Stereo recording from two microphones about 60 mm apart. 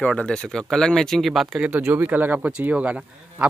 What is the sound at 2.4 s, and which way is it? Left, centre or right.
Speech, centre.